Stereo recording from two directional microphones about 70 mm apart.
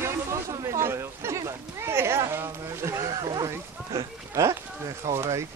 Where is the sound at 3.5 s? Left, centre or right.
Right.